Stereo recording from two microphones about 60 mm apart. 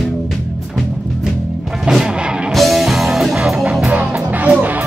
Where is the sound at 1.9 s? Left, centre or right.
Centre.